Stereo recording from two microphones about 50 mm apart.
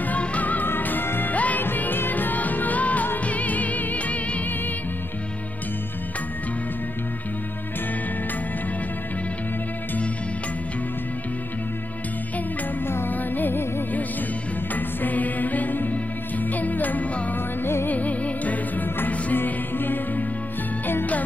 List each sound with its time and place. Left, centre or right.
0.0 s music: left
1.3 s music: left
1.6 s music: left
13.1 s music: left
14.8 s music: left